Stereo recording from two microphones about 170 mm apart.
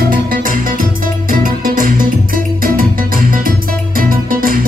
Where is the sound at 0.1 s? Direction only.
55° right (ahead or behind).